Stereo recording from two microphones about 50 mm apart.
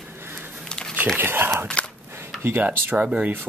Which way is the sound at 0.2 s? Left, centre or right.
Right.